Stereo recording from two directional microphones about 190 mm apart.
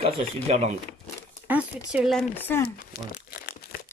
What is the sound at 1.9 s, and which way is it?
Speech, centre (ahead or behind).